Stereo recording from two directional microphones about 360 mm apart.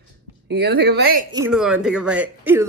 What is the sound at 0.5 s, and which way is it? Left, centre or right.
Speech, right.